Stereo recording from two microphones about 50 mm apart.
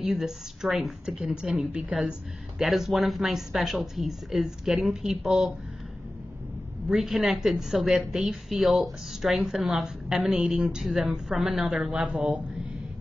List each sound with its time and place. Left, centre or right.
0.0 s speech: centre
1.1 s a woman's voice: centre
6.9 s a woman's voice: centre